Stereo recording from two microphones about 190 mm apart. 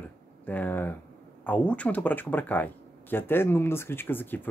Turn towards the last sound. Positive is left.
turn(degrees=10)  # may be behind; listen again after turning